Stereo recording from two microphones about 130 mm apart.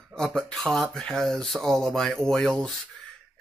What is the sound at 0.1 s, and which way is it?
Speech, 5° left (ahead or behind).